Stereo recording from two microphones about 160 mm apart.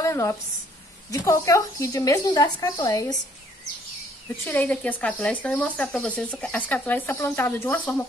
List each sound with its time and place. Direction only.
0.0 s a woman's voice: 20° left (ahead or behind)
4.5 s speech: 10° left (ahead or behind)